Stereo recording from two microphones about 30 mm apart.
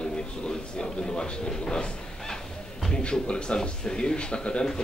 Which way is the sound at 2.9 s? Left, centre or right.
Left.